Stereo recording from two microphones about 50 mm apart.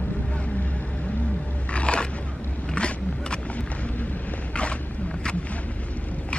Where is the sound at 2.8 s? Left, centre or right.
Centre.